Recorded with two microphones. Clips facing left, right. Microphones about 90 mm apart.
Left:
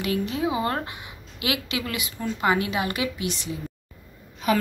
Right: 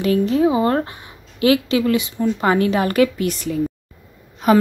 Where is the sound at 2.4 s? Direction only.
40° right (ahead or behind).